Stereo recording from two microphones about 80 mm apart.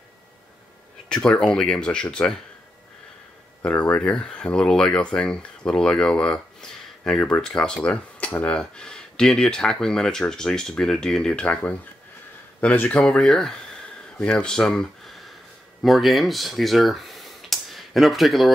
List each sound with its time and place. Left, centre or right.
1.0 s speech: centre
3.6 s speech: centre